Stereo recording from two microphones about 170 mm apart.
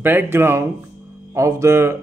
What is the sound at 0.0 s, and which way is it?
A man's voice, 10° right (ahead or behind).